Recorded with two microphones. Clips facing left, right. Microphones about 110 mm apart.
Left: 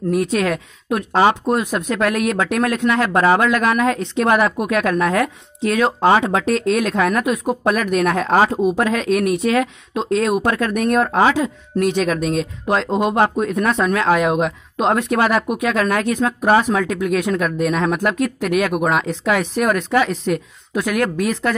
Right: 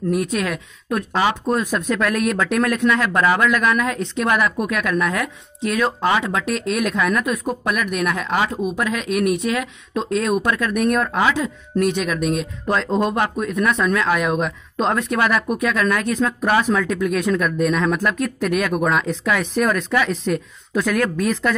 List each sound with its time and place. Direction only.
0.1 s speech: 30° left (ahead or behind)
1.4 s speech: 20° left (ahead or behind); by 5.3 s 35° left (ahead or behind)
5.7 s speech: 20° left (ahead or behind)
5.9 s speech: 35° left (ahead or behind)
20.7 s speech: 15° left (ahead or behind)